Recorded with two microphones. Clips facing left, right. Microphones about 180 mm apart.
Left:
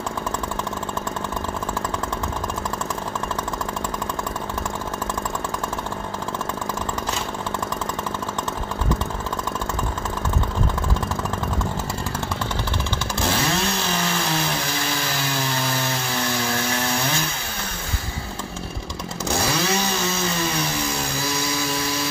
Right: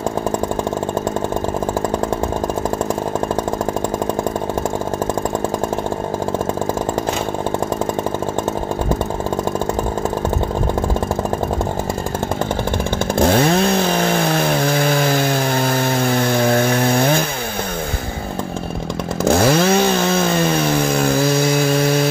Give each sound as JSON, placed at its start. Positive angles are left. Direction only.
{"t": 13.2, "sound": "chainsaw", "side_deg": -55}
{"t": 19.2, "sound": "chainsaw", "side_deg": -55}